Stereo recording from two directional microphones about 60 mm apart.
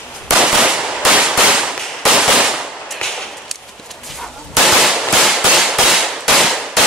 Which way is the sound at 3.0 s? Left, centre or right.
Centre.